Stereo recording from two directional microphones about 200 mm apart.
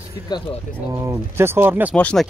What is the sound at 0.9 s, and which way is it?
Speech, 15° right (ahead or behind).